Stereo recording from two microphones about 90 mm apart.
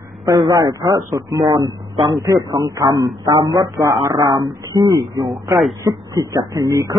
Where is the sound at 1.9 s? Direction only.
65° right (ahead or behind).